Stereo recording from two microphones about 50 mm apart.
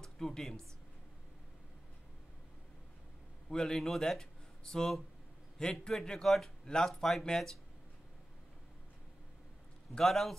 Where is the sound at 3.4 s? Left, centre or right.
Centre.